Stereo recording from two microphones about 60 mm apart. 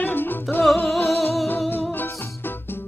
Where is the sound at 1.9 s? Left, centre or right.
Left.